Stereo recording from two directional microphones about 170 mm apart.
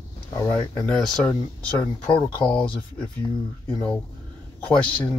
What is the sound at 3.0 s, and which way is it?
Speech, 30° left (ahead or behind).